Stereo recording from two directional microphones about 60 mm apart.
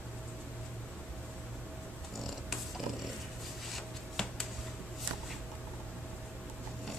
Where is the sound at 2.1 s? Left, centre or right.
Centre.